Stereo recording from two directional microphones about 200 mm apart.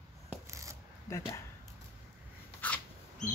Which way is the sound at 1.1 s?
15° left (ahead or behind).